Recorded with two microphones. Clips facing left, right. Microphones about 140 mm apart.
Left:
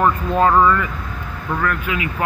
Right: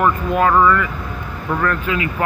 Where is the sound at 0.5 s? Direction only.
15° left (ahead or behind).